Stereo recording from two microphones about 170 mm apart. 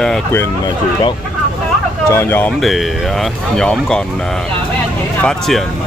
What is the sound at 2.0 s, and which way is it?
Speech, 15° left (ahead or behind).